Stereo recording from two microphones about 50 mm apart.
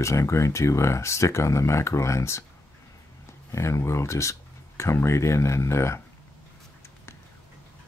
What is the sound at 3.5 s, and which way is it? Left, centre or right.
Speech, left.